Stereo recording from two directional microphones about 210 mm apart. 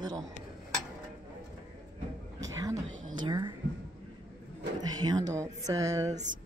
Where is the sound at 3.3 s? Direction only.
20° right (ahead or behind).